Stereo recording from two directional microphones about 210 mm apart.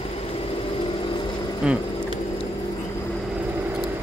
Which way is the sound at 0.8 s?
25° left (ahead or behind).